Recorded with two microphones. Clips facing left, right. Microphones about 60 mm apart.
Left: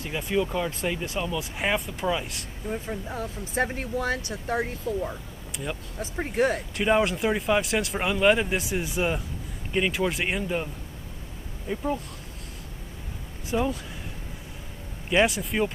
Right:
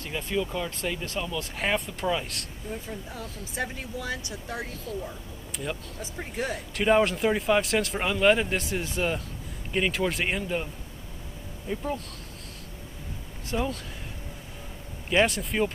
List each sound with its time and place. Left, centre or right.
0.1 s speech: centre
2.7 s speech: left
6.3 s speech: left
6.8 s speech: centre
11.7 s speech: centre
13.5 s speech: centre
15.0 s speech: centre